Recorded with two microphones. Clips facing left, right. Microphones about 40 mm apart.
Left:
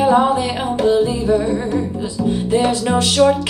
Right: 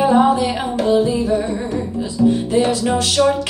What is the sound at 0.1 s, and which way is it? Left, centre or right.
Music, centre.